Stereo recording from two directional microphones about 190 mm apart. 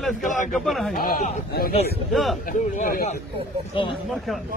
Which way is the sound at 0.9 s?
45° left (ahead or behind).